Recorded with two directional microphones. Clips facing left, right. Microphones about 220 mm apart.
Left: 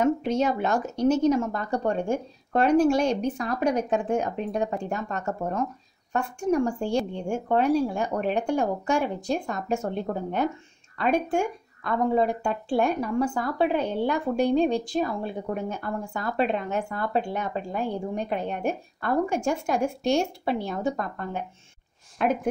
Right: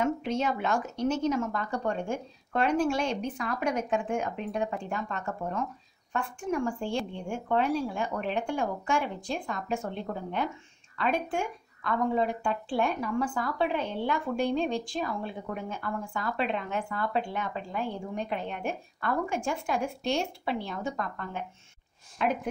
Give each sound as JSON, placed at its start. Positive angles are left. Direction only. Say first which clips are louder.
{"t": 0.0, "sound": "speech", "louder": "left 5 dB", "side_deg": 40}